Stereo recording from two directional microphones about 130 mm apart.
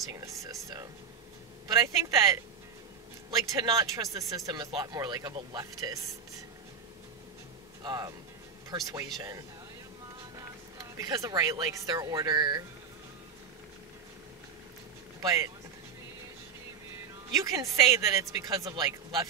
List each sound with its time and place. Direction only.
0.0 s speech: 25° right (ahead or behind)
7.8 s speech: 30° right (ahead or behind)
10.3 s speech: 30° right (ahead or behind)
15.2 s speech: 25° right (ahead or behind)
17.3 s speech: 25° right (ahead or behind)